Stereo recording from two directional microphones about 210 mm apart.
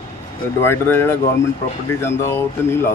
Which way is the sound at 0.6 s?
10° left (ahead or behind).